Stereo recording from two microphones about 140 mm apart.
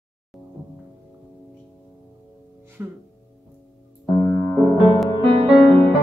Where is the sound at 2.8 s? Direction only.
15° right (ahead or behind).